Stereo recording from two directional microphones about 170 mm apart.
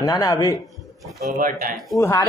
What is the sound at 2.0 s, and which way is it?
Speech, 15° left (ahead or behind).